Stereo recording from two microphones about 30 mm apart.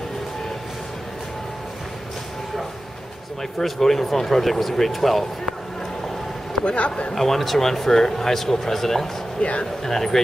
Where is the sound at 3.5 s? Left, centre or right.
Centre.